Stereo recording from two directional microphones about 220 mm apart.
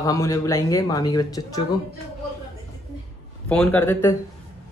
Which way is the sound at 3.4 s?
5° left (ahead or behind).